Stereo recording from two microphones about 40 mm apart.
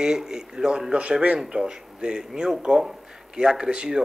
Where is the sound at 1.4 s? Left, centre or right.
Right.